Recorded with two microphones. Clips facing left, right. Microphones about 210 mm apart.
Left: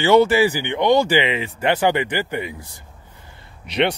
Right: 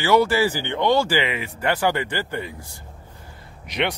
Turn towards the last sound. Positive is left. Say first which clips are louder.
# left 5 dB
turn(degrees=30)  # may be behind; listen again after turning